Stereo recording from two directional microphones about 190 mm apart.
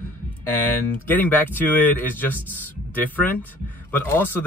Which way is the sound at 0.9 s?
10° left (ahead or behind).